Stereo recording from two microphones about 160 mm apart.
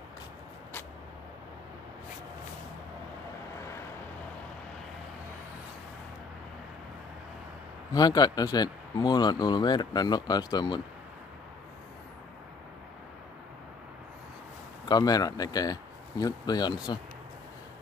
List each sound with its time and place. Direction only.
7.9 s speech: 25° left (ahead or behind)
14.9 s speech: 25° left (ahead or behind)